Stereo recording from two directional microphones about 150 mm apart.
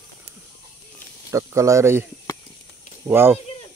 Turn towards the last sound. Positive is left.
turn(degrees=-15)  # may be behind; listen again after turning